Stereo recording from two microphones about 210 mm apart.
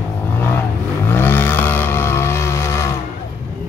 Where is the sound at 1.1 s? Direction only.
10° left (ahead or behind).